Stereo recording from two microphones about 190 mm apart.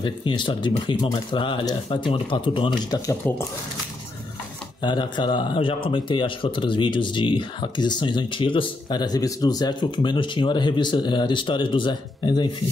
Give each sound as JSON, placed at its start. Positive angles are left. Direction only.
{"t": 0.0, "sound": "speech", "side_deg": 25}
{"t": 4.8, "sound": "speech", "side_deg": 25}